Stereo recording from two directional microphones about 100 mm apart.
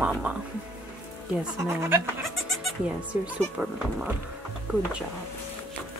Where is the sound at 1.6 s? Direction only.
25° right (ahead or behind).